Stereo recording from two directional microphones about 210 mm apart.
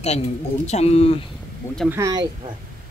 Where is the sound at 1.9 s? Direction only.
15° right (ahead or behind).